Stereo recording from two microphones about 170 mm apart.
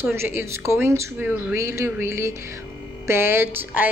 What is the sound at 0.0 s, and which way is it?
A woman's voice, 15° right (ahead or behind).